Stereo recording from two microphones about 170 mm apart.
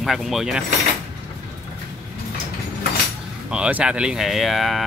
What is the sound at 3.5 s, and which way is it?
Speech, 5° right (ahead or behind).